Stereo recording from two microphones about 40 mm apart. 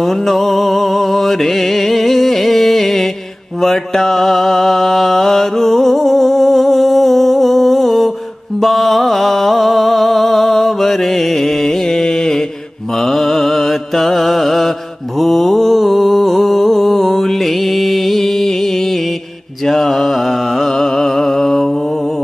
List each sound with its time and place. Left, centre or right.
0.0 s mantra: centre
8.5 s music: centre
13.0 s mantra: centre
19.6 s music: centre